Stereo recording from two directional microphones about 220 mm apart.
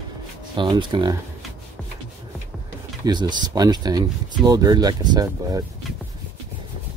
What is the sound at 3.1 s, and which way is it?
Speech, 20° right (ahead or behind).